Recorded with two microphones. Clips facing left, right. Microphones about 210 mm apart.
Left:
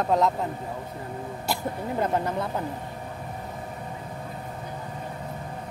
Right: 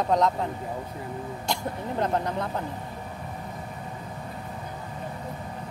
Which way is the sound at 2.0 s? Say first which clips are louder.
Left 1 dB; 5° left (ahead or behind).